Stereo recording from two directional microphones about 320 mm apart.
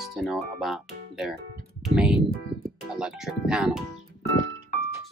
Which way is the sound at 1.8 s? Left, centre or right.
Centre.